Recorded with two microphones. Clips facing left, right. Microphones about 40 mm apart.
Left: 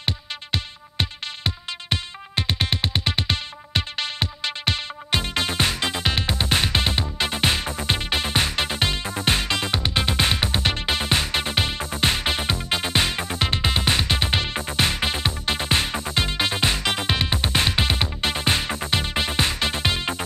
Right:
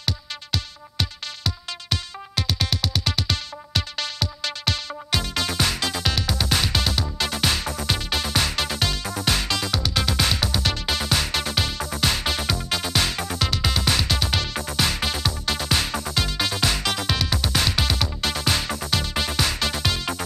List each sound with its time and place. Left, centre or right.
0.0 s music: left